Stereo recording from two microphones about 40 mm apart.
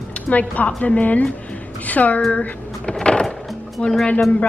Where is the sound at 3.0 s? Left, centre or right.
Left.